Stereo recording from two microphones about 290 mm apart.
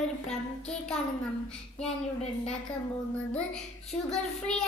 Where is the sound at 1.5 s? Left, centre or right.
Centre.